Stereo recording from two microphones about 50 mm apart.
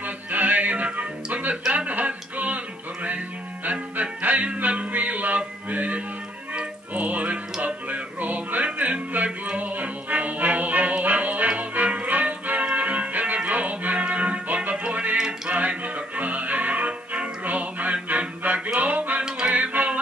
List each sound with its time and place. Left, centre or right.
0.0 s music: right
15.1 s music: centre
15.5 s music: right
19.2 s music: right
19.5 s music: right